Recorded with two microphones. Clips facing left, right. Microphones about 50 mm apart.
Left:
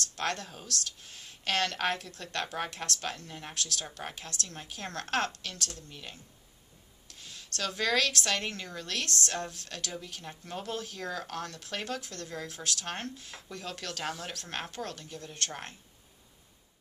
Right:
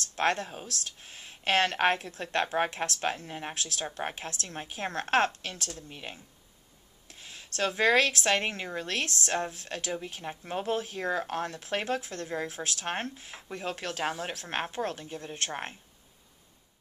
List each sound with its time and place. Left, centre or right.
0.1 s speech: right